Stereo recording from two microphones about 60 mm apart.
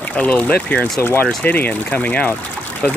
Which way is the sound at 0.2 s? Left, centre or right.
Left.